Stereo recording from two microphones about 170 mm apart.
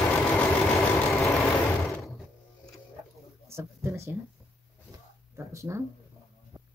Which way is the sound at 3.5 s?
15° right (ahead or behind).